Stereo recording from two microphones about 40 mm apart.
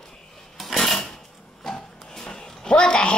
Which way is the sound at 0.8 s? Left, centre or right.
Centre.